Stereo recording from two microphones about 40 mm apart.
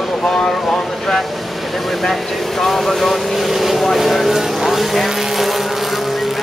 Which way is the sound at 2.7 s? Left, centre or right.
Centre.